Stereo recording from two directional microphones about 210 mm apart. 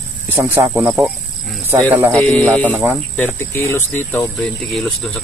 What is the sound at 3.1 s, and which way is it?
Speech, 10° left (ahead or behind).